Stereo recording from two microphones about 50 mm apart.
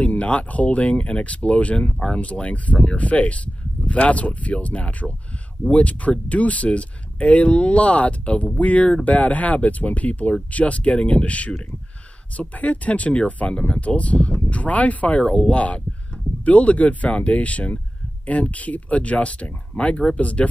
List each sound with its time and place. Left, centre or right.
0.0 s speech: left